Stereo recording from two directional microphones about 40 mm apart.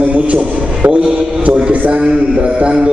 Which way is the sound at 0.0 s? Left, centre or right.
Right.